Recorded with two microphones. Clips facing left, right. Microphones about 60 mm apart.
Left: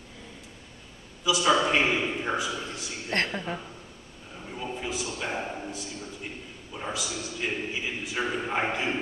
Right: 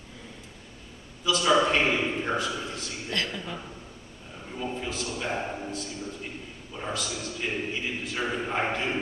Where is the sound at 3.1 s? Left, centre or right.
Left.